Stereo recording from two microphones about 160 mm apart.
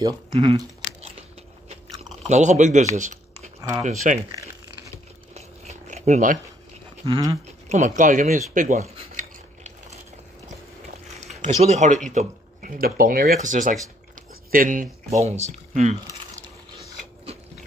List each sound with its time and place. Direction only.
0.3 s speech: 35° right (ahead or behind)
2.2 s speech: 50° right (ahead or behind)
5.3 s crumpling: 45° right (ahead or behind)
7.0 s a sound: 20° right (ahead or behind)
7.6 s a sound: 50° right (ahead or behind)
11.2 s speech: 45° right (ahead or behind)